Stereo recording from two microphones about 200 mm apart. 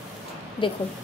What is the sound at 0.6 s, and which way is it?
Speech, 25° left (ahead or behind).